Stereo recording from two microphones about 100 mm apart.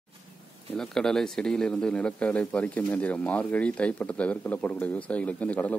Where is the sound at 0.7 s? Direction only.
5° left (ahead or behind).